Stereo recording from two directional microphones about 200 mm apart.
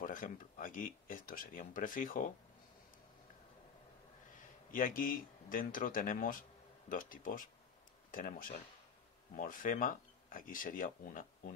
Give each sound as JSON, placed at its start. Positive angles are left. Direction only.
{"t": 0.0, "sound": "speech", "side_deg": 40}
{"t": 4.4, "sound": "speech", "side_deg": 45}